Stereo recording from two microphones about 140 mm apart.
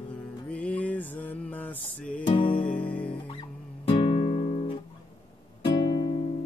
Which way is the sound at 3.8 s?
40° left (ahead or behind).